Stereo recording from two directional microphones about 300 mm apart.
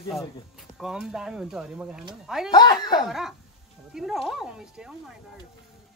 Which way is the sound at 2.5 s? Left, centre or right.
Centre.